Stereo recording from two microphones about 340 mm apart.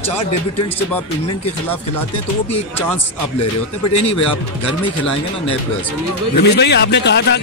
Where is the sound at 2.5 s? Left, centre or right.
Centre.